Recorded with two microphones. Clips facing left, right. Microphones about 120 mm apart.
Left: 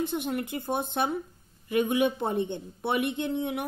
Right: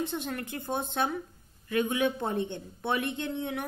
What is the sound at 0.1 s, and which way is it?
A woman's voice, 15° left (ahead or behind).